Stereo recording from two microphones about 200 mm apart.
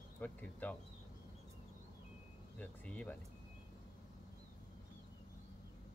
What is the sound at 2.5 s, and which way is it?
Speech, 5° left (ahead or behind).